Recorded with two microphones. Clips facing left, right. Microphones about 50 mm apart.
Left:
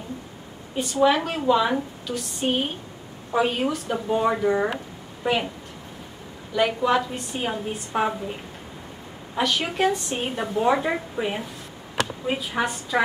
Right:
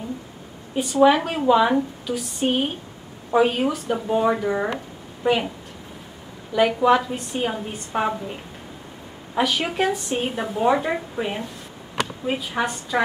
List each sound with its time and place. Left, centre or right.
0.7 s speech: centre
6.5 s speech: centre